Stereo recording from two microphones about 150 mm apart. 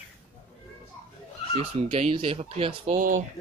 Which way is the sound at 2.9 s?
60° right (ahead or behind).